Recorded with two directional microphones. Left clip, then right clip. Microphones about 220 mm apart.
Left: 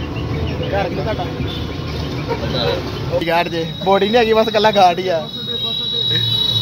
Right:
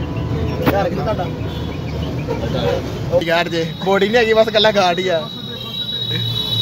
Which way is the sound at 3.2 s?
Centre (ahead or behind).